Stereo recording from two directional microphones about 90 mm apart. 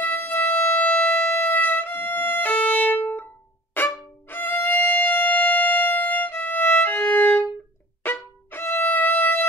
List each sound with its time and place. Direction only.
0.0 s music: 25° left (ahead or behind)
3.7 s violin: 20° left (ahead or behind)
8.0 s music: 20° left (ahead or behind)